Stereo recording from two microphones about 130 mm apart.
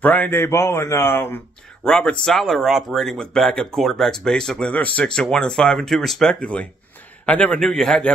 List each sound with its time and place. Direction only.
0.0 s a man's voice: 10° left (ahead or behind)
1.9 s a man's voice: 5° left (ahead or behind)